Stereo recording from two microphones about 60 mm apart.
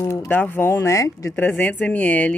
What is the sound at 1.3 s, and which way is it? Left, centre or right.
A woman's voice, left.